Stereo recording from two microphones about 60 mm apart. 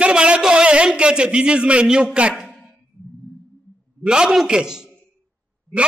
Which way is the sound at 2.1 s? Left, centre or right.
Right.